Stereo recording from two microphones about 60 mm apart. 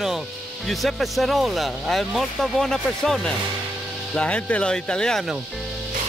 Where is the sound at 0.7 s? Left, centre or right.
Centre.